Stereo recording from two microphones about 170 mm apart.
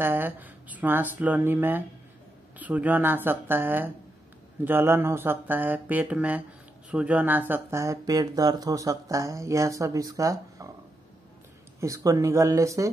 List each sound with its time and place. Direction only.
0.0 s speech: 10° right (ahead or behind)
11.8 s speech: 20° right (ahead or behind)